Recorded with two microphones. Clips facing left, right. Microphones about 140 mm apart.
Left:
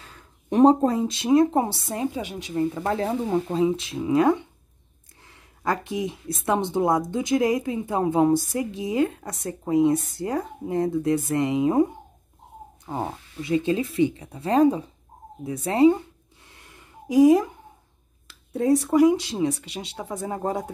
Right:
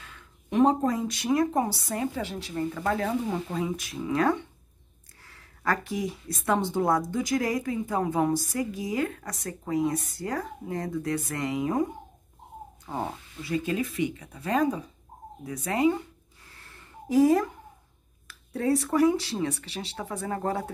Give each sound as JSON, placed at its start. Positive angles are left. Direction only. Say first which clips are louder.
{"t": 0.0, "sound": "speech", "louder": "left 2 dB", "side_deg": 35}
{"t": 16.4, "sound": "a sound", "louder": "left 1 dB", "side_deg": 15}
{"t": 18.2, "sound": "speech", "louder": "left 4 dB", "side_deg": 20}